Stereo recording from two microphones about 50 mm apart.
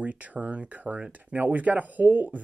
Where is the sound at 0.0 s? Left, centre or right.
Right.